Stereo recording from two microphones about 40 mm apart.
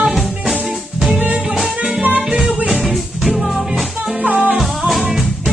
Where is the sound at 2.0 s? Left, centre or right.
Right.